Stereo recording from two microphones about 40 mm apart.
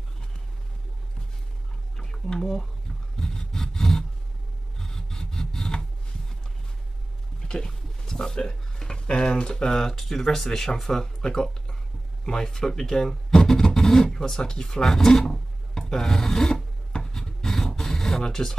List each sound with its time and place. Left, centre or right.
2.0 s a sound: centre
3.2 s sawing: centre
4.7 s rub: centre
7.4 s speech: centre
16.9 s filing: centre